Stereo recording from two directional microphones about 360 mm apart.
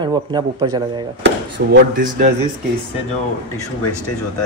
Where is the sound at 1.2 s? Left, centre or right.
Right.